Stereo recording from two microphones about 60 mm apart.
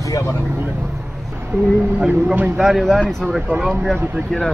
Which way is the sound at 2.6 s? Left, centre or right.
Centre.